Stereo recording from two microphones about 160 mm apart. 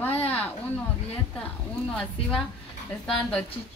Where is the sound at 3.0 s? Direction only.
5° left (ahead or behind).